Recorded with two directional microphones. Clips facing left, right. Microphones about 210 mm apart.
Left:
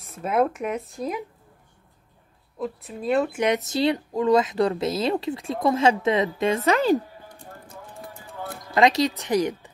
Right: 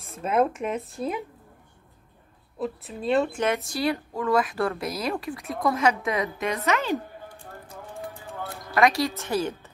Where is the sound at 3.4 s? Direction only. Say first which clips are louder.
Left 4 dB; 20° left (ahead or behind); by 7.0 s 35° left (ahead or behind).